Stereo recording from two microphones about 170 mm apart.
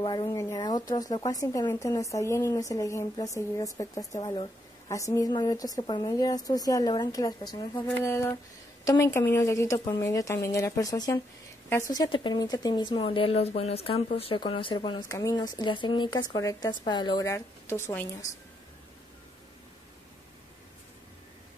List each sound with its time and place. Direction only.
0.0 s a woman's voice: 25° left (ahead or behind)